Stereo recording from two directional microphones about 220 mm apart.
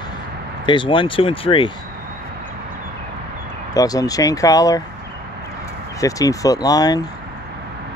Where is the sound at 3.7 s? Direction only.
15° left (ahead or behind).